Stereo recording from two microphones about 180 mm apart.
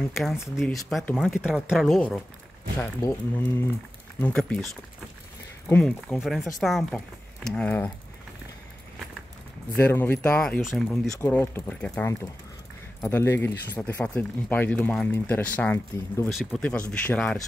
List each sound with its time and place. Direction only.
0.1 s speech: centre (ahead or behind)
5.7 s speech: 5° left (ahead or behind)
9.7 s speech: 10° left (ahead or behind)
11.1 s speech: 10° left (ahead or behind)